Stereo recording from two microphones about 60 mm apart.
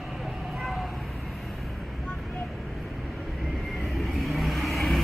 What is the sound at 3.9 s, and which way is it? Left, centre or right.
Vehicle, centre.